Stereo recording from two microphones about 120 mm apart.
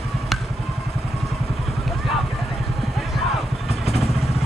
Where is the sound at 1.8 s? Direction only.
Centre (ahead or behind).